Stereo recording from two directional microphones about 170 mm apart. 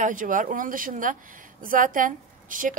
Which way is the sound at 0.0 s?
50° right (ahead or behind).